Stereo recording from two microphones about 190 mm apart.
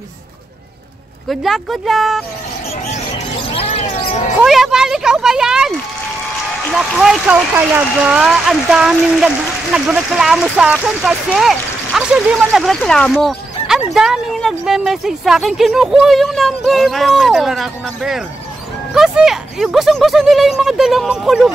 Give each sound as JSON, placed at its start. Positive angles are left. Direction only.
{"t": 1.3, "sound": "speech", "side_deg": 0}
{"t": 3.5, "sound": "a sound", "side_deg": 30}
{"t": 4.4, "sound": "speech", "side_deg": 0}